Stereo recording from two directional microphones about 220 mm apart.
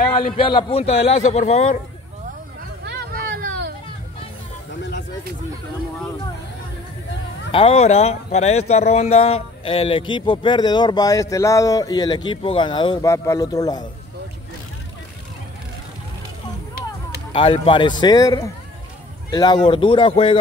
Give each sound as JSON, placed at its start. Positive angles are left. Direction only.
{"t": 0.4, "sound": "speech", "side_deg": 20}
{"t": 2.8, "sound": "hubbub", "side_deg": -45}
{"t": 7.5, "sound": "speech", "side_deg": 25}
{"t": 17.3, "sound": "speech", "side_deg": 25}